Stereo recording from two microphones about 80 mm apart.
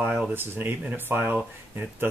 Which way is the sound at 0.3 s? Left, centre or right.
Right.